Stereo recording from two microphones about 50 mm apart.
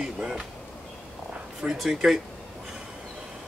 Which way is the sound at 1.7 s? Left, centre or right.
Centre.